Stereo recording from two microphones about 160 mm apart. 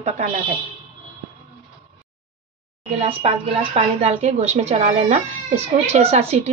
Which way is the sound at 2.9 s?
35° right (ahead or behind).